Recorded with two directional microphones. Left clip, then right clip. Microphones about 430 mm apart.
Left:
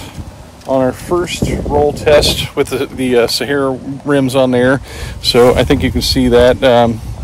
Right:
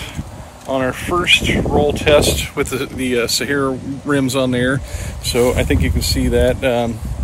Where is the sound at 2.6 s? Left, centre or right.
Centre.